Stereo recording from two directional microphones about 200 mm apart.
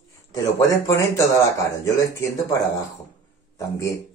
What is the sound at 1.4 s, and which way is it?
A man's voice, 15° left (ahead or behind).